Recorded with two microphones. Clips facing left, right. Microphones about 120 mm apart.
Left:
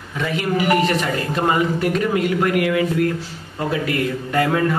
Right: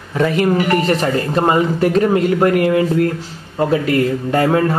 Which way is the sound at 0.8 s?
35° right (ahead or behind).